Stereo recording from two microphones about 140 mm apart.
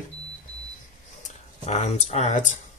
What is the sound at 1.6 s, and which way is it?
Speech, 50° left (ahead or behind).